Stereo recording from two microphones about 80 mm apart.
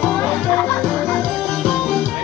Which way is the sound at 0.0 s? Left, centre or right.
Centre.